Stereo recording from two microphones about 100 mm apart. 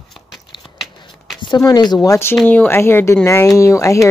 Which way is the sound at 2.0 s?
30° left (ahead or behind).